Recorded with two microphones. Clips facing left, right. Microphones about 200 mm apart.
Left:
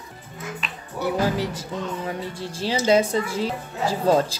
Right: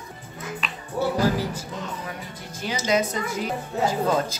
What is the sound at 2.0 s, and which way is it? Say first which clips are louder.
A woman's voice: left 6 dB; 30° left (ahead or behind).